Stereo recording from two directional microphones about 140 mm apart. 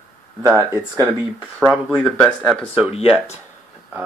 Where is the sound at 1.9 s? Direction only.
10° left (ahead or behind).